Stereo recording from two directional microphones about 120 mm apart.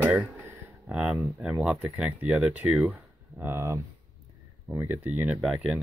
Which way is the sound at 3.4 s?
20° right (ahead or behind).